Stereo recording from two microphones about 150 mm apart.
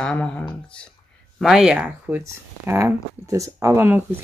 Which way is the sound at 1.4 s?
5° right (ahead or behind).